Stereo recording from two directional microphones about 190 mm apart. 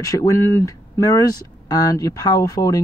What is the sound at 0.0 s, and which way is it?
Speech, 15° left (ahead or behind).